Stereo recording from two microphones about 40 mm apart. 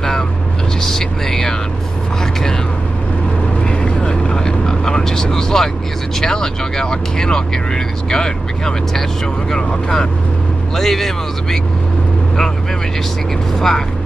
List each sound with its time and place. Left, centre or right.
0.8 s vehicle: centre
3.7 s vehicle: left
6.2 s speech: centre
10.8 s speech: centre
13.6 s speech: centre